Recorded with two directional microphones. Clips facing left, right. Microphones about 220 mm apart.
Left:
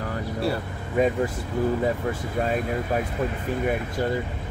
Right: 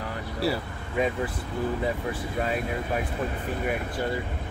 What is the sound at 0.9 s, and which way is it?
Speech, 40° left (ahead or behind).